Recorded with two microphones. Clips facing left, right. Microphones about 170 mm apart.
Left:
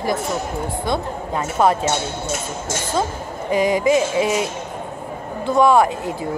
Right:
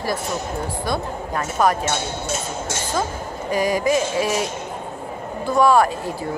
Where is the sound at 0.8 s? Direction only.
20° left (ahead or behind).